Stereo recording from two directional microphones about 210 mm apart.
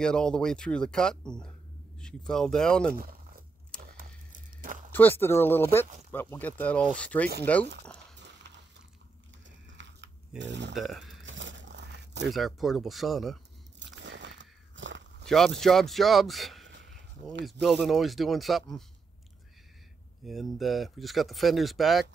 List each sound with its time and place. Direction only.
0.0 s speech: 5° left (ahead or behind)
2.9 s a sound: 45° right (ahead or behind)
4.9 s speech: 10° left (ahead or behind)
7.8 s a sound: 5° left (ahead or behind)
9.8 s a sound: 60° right (ahead or behind)
10.4 s speech: 55° right (ahead or behind)
10.7 s speech: centre (ahead or behind)
11.2 s crumpling: 60° right (ahead or behind)
12.3 s speech: centre (ahead or behind)
13.7 s biting: 60° right (ahead or behind)
15.2 s speech: centre (ahead or behind)
16.6 s a sound: 55° right (ahead or behind)
17.5 s speech: centre (ahead or behind)
20.2 s speech: centre (ahead or behind)